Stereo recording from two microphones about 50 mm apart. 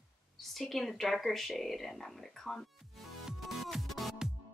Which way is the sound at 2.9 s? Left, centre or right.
Centre.